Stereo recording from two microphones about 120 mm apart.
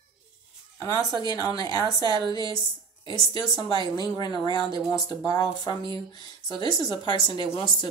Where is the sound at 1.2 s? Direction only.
35° left (ahead or behind).